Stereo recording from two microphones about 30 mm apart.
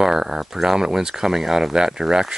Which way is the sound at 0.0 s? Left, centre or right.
Centre.